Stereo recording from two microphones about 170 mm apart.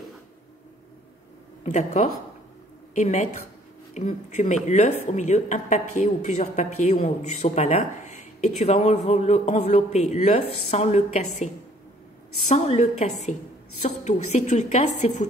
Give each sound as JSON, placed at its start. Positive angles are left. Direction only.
{"t": 1.6, "sound": "a woman's voice", "side_deg": 40}